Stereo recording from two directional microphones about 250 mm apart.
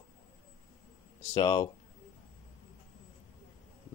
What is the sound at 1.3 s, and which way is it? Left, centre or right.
Speech, centre.